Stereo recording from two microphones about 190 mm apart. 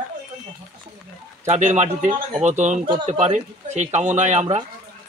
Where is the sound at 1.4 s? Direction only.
40° right (ahead or behind).